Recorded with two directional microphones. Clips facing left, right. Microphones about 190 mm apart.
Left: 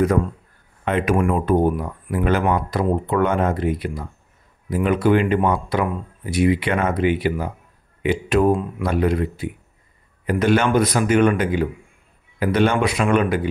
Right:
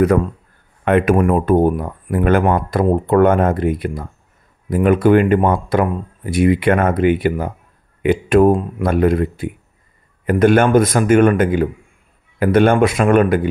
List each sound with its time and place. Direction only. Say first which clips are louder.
0.8 s speech: right 7 dB; 60° right (ahead or behind)
1.1 s speech: right 4 dB; 45° right (ahead or behind)